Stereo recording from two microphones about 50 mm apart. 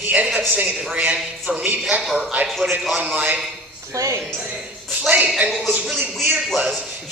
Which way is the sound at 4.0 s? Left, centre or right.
Right.